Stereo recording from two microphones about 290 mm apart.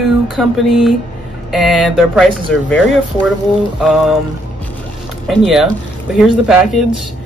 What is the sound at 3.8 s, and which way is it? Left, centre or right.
Speech, centre.